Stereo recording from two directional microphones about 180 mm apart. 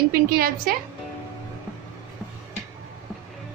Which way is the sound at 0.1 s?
55° right (ahead or behind).